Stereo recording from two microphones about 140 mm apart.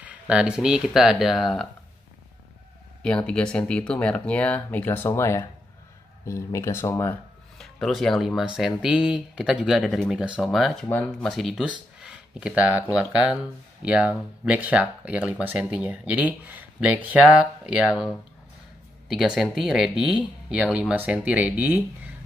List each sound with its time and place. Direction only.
0.0 s speech: 5° right (ahead or behind)
3.0 s speech: 5° left (ahead or behind)
7.5 s speech: centre (ahead or behind)
10.9 s speech: 10° left (ahead or behind)
11.2 s speech: centre (ahead or behind)